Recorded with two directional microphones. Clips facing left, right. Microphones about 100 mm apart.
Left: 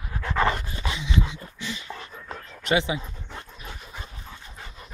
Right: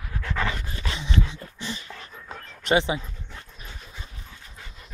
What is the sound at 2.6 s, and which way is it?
Speech, 30° right (ahead or behind).